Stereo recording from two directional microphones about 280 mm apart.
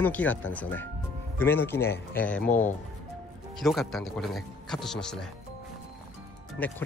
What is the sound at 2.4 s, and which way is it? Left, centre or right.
Speech, left.